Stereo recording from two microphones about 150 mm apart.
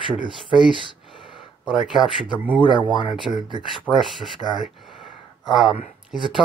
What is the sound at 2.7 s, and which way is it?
Speech, 30° left (ahead or behind).